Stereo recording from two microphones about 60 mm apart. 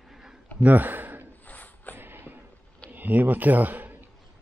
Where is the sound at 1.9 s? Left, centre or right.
Right.